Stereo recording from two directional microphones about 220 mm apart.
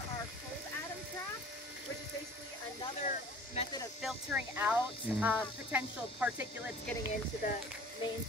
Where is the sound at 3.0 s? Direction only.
35° left (ahead or behind).